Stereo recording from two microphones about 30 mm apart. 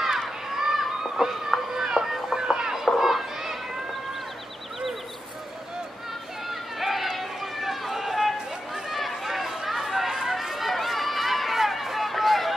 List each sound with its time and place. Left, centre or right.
0.0 s a sound: centre
1.5 s cat: centre
2.0 s music: centre
3.0 s children playing: centre
6.8 s run: centre
8.9 s chatter: centre
10.2 s run: centre